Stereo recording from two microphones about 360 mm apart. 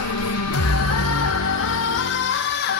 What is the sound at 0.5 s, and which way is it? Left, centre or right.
Music, left.